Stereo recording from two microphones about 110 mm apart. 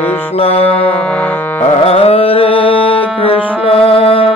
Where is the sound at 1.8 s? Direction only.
65° left (ahead or behind).